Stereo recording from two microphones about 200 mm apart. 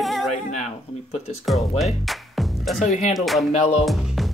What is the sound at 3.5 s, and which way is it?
Speech, 35° left (ahead or behind).